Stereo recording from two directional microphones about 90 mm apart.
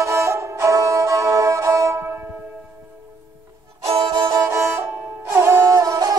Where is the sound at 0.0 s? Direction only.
35° right (ahead or behind).